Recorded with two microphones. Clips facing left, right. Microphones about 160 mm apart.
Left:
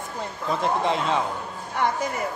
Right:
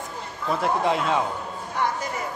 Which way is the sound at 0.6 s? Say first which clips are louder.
Right 1 dB; 10° right (ahead or behind).